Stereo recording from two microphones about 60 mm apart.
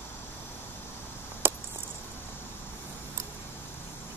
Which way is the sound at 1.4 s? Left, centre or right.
Right.